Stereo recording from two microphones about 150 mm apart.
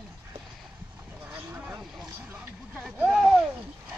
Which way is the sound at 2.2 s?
10° right (ahead or behind).